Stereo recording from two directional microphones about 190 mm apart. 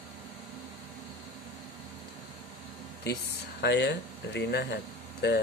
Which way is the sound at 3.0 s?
60° left (ahead or behind).